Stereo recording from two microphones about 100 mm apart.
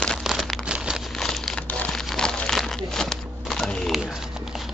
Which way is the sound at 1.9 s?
5° left (ahead or behind).